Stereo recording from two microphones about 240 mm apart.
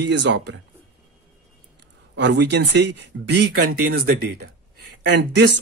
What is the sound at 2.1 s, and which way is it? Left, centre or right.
Speech, right.